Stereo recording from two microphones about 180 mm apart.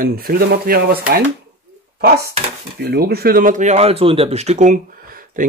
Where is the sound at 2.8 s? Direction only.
65° right (ahead or behind).